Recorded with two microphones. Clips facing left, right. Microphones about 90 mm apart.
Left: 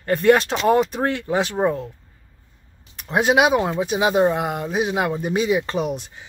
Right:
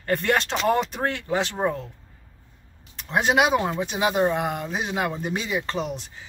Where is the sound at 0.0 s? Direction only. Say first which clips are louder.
Left 7 dB; 10° left (ahead or behind).